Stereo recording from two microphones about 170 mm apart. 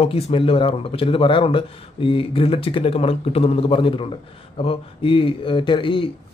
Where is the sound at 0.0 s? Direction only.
35° left (ahead or behind).